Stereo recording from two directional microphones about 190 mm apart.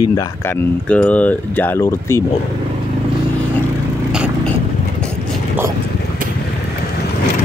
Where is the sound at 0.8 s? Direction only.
5° left (ahead or behind).